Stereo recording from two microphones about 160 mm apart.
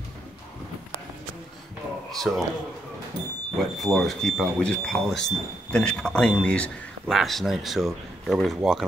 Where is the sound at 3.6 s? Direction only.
Centre (ahead or behind).